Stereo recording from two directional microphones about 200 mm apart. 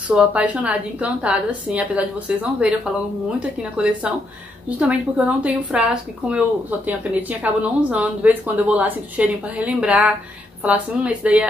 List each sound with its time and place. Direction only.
0.1 s a woman's voice: 5° right (ahead or behind)